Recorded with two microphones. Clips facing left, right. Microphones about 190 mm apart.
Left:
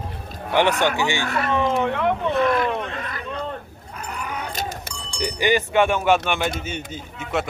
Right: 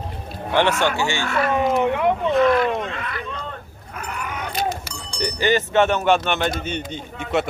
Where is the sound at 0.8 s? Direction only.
15° left (ahead or behind).